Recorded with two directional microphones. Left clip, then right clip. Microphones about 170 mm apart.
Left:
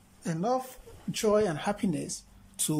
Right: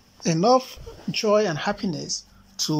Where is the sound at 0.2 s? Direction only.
10° right (ahead or behind).